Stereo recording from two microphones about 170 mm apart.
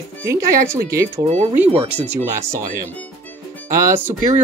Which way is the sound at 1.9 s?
10° right (ahead or behind).